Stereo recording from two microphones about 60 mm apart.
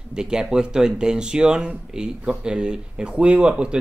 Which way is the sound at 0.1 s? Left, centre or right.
Centre.